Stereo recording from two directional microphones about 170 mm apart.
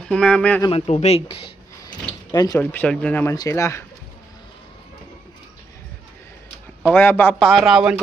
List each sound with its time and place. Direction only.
0.0 s speech: 5° left (ahead or behind)
0.7 s speech: 35° left (ahead or behind)
2.6 s speech: 10° left (ahead or behind)
6.9 s speech: 10° left (ahead or behind)
7.3 s speech: centre (ahead or behind)